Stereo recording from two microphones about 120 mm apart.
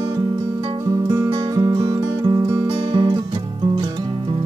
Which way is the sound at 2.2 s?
40° right (ahead or behind).